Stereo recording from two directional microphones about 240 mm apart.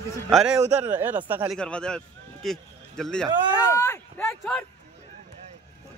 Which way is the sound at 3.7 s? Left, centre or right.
Centre.